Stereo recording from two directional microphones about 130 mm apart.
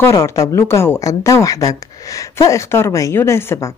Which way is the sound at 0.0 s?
20° left (ahead or behind).